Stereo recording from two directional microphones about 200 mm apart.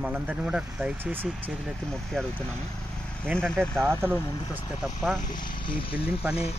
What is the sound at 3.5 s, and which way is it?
Speech, 10° right (ahead or behind).